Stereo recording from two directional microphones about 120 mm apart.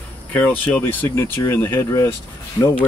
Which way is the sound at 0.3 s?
15° left (ahead or behind).